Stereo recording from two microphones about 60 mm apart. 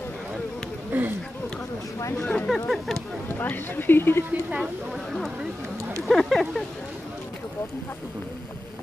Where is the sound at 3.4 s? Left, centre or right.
Left.